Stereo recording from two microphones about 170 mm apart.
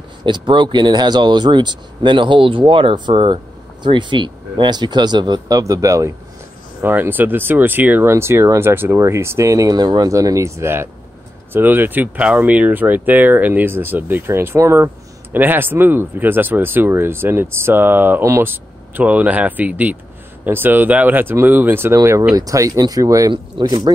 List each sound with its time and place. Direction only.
0.2 s speech: 30° right (ahead or behind)